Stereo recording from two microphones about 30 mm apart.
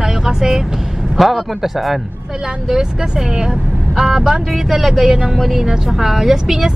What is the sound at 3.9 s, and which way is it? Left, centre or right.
A man's voice, centre.